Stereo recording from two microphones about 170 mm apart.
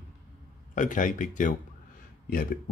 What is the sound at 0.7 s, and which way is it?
Speech, 50° left (ahead or behind).